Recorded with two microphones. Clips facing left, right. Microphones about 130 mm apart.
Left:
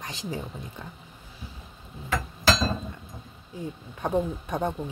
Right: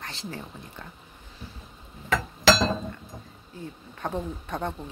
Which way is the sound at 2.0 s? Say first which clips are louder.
Right 4 dB; 80° right.